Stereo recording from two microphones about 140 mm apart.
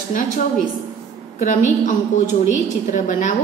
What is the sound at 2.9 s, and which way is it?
Speech, 65° left (ahead or behind).